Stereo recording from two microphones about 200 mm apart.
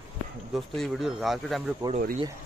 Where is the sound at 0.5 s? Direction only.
Centre (ahead or behind).